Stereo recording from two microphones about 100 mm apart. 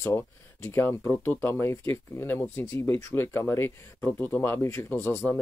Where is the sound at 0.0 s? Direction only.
25° left (ahead or behind).